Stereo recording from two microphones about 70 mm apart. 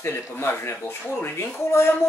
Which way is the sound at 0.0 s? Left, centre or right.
Left.